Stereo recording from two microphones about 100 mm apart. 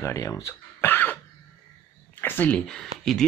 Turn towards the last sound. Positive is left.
turn(degrees=5)  # may be behind; listen again after turning